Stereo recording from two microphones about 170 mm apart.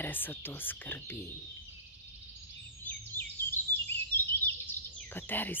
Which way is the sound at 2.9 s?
10° left (ahead or behind).